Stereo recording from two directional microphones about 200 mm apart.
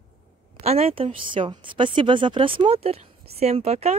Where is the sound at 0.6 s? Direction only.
30° right (ahead or behind).